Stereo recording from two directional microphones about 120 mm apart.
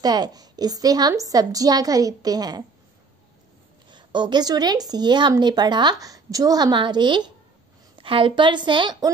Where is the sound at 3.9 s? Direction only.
40° right (ahead or behind).